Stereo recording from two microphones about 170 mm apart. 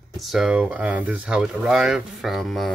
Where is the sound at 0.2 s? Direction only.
Centre (ahead or behind).